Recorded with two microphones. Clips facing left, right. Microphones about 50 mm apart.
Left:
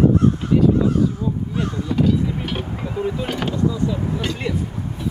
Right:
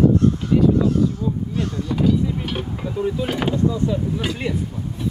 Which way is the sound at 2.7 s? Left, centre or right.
Centre.